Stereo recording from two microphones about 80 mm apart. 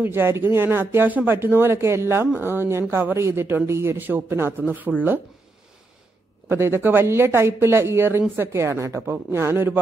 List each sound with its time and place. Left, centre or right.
0.0 s speech: right
6.5 s a woman's voice: right